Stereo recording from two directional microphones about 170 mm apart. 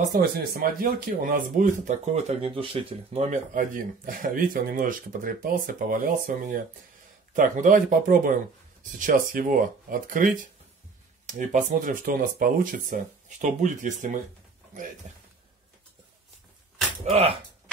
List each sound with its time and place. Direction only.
0.0 s speech: 55° right (ahead or behind)
17.0 s speech: 40° right (ahead or behind)